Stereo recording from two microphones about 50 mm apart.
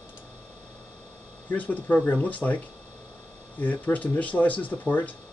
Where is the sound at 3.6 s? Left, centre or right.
Left.